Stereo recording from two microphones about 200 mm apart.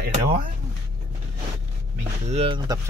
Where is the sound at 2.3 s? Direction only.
30° right (ahead or behind).